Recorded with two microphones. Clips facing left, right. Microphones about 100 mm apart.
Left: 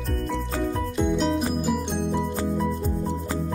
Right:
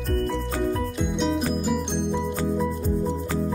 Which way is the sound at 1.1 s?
Centre (ahead or behind).